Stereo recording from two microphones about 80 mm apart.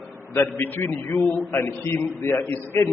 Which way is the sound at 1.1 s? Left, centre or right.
Centre.